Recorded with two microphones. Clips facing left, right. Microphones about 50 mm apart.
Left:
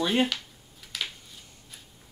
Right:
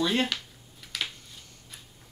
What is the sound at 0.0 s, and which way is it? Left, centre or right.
Speech, centre.